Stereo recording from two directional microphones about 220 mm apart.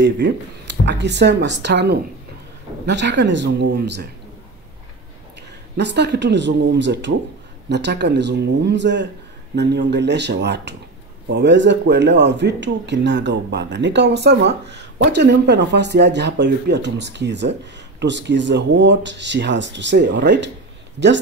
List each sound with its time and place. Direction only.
0.0 s speech: 50° right (ahead or behind)
5.8 s speech: 50° right (ahead or behind)